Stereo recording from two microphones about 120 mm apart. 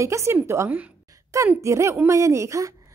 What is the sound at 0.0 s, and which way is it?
A woman's voice, 25° right (ahead or behind).